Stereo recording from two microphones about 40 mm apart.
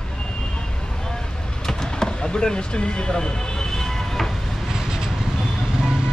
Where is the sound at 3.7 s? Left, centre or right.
Centre.